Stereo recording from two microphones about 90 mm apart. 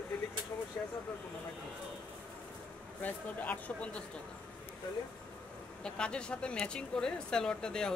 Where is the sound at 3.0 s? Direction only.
20° left (ahead or behind).